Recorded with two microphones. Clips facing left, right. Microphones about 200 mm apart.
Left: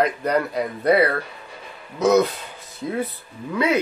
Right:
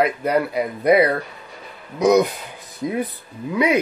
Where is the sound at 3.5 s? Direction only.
15° right (ahead or behind).